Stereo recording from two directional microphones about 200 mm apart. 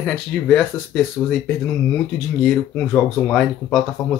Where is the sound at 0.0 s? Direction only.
5° left (ahead or behind).